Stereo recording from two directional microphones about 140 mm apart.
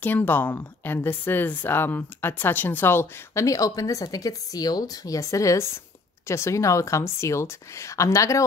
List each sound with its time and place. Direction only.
0.0 s a woman's voice: 15° left (ahead or behind)